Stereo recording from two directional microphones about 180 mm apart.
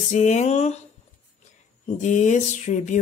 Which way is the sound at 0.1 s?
40° left (ahead or behind).